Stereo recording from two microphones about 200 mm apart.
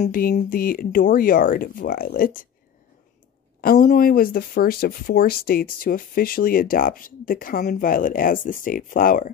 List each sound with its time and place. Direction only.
0.0 s speech: 45° left (ahead or behind)
3.6 s speech: 45° left (ahead or behind)